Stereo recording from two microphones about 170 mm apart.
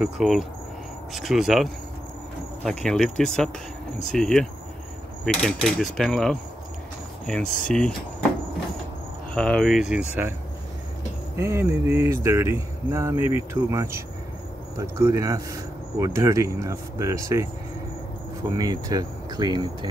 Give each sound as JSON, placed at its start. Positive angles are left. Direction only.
{"t": 0.0, "sound": "mechanisms", "side_deg": -5}
{"t": 7.4, "sound": "speech", "side_deg": 50}
{"t": 9.3, "sound": "mechanisms", "side_deg": 5}
{"t": 11.3, "sound": "speech", "side_deg": -15}
{"t": 18.6, "sound": "speech", "side_deg": -20}